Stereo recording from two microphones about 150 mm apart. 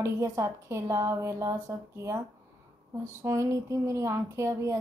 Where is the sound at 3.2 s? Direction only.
20° right (ahead or behind).